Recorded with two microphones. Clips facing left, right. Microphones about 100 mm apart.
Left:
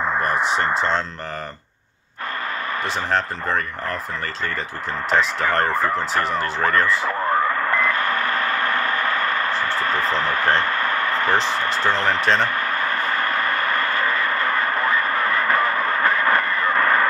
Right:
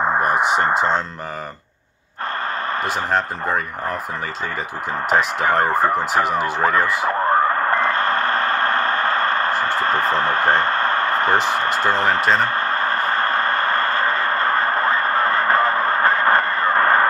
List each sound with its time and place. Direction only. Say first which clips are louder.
0.2 s speech: right 3 dB; 15° right (ahead or behind)
3.1 s speech: even; 10° right (ahead or behind)
5.1 s speech: right 2 dB; 10° right (ahead or behind)
7.1 s radio: right 3 dB; 30° right (ahead or behind)
9.5 s a sound: right 3 dB; 40° right (ahead or behind)
11.8 s speech: right 1 dB; 15° right (ahead or behind)
12.4 s vehicle: right 2 dB; 35° right (ahead or behind)